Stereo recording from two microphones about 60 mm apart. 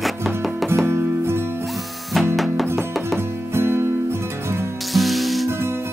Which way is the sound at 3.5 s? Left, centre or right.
Right.